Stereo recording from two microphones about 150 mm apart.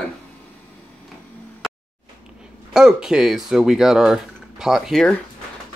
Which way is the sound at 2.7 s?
5° right (ahead or behind).